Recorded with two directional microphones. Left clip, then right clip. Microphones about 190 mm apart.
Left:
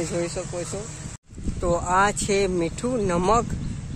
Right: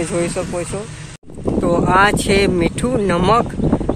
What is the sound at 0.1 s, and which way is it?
Speech, 20° right (ahead or behind).